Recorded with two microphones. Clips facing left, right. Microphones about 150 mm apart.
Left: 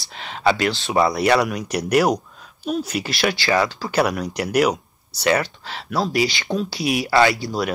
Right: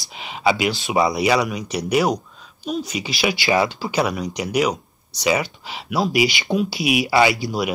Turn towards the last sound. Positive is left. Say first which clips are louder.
# even
turn(degrees=-15)  # may be behind; listen again after turning